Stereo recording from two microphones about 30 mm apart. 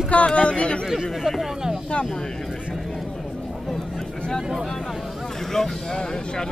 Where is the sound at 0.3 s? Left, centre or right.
Left.